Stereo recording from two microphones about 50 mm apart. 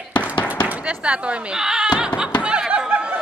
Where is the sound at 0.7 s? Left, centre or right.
Right.